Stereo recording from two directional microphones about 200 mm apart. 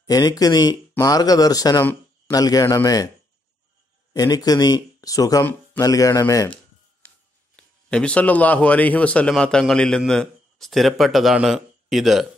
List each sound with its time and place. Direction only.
0.0 s speech: 20° left (ahead or behind)
4.1 s speech: 20° left (ahead or behind)
7.5 s a man's voice: 5° left (ahead or behind)